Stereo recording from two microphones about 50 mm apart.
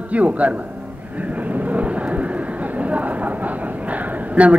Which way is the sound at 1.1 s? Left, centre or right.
Right.